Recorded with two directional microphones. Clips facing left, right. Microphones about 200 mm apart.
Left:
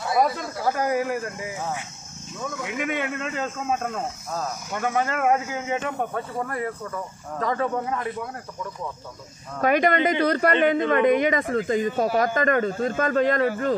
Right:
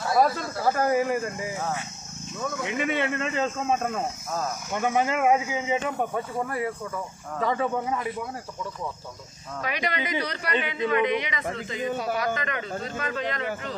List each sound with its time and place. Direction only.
0.7 s speech: 10° left (ahead or behind)
2.8 s speech: 10° left (ahead or behind)
4.7 s a man's voice: 15° right (ahead or behind)
9.6 s speech: 50° left (ahead or behind)